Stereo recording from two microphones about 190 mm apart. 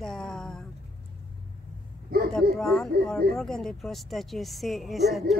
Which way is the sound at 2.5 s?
5° left (ahead or behind).